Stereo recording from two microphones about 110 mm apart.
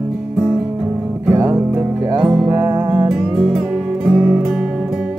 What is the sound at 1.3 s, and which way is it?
Music, 25° right (ahead or behind).